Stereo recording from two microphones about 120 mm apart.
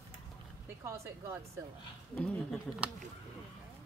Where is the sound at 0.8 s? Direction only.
25° right (ahead or behind).